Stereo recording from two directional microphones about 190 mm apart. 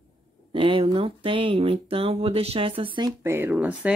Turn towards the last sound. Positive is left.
turn(degrees=-5)  # may be behind; listen again after turning